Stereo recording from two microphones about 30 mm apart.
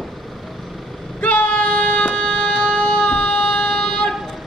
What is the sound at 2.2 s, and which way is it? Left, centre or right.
Siren, left.